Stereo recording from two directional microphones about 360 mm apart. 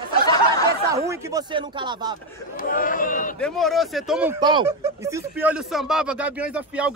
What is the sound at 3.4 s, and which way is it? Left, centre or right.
Speech, centre.